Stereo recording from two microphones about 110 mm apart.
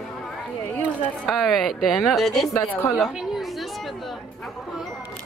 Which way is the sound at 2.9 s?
5° right (ahead or behind).